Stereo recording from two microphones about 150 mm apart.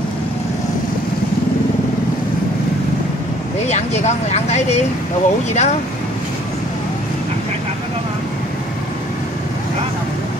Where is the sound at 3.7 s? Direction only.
45° left (ahead or behind).